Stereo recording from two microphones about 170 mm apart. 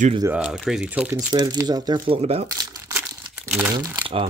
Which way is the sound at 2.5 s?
20° right (ahead or behind).